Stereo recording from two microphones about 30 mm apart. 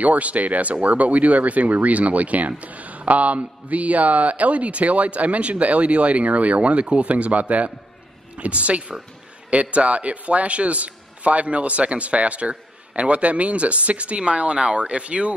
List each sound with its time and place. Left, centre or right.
0.0 s a man's voice: right